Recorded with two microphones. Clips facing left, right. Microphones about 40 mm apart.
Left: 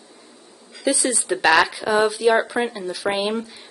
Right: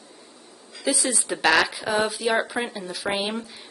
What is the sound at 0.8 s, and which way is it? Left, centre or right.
Speech, centre.